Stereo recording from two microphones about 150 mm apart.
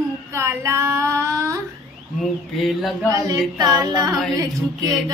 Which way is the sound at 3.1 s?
25° right (ahead or behind).